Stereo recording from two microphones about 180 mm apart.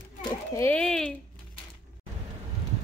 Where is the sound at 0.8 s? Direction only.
5° left (ahead or behind).